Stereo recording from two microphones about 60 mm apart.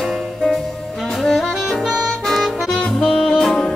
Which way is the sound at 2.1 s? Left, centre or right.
Centre.